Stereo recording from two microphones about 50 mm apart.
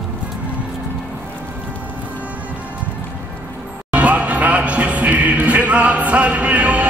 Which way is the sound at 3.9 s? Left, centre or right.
Right.